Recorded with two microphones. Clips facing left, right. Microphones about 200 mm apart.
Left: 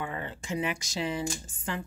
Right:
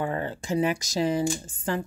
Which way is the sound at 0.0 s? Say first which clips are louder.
Right 7 dB; 40° right (ahead or behind).